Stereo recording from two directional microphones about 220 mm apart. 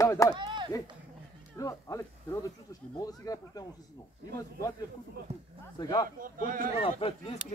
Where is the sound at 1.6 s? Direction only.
15° left (ahead or behind).